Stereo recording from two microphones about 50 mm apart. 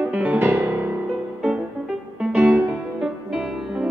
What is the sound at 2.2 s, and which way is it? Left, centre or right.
Music, centre.